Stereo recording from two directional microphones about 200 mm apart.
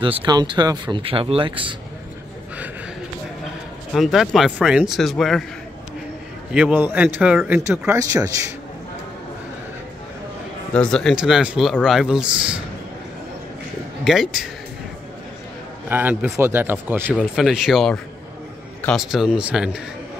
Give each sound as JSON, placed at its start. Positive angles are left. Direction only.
{"t": 0.0, "sound": "speech", "side_deg": -25}
{"t": 3.9, "sound": "speech", "side_deg": 0}
{"t": 6.5, "sound": "speech", "side_deg": -5}
{"t": 10.7, "sound": "speech", "side_deg": 5}
{"t": 14.0, "sound": "speech", "side_deg": 0}
{"t": 15.9, "sound": "speech", "side_deg": -10}